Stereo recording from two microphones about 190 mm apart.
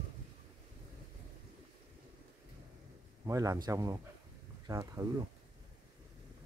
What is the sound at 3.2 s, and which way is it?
Speech, 15° right (ahead or behind).